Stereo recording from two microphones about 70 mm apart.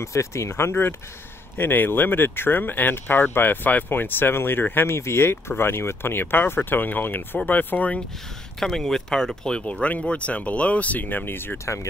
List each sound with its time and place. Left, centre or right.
0.0 s speech: left
8.5 s speech: centre; by 11.6 s left
11.6 s speech: left